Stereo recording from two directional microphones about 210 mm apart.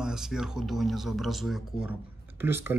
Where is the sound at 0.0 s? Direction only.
Centre (ahead or behind).